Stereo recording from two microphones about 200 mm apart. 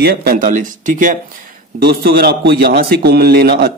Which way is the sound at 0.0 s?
50° right (ahead or behind).